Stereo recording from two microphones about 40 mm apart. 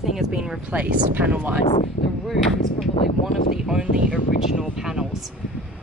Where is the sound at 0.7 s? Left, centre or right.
Right.